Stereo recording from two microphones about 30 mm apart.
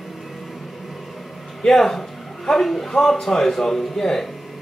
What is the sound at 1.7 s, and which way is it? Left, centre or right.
Speech, centre.